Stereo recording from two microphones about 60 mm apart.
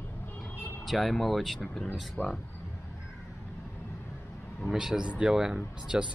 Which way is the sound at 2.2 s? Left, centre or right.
Left.